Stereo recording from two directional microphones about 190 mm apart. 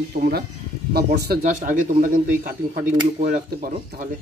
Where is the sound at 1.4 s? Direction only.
40° right (ahead or behind).